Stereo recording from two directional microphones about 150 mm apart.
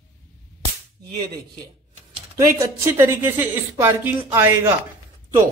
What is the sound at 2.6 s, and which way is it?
Speech, 15° right (ahead or behind).